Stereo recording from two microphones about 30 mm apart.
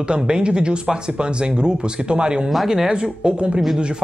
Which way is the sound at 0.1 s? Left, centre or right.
Right.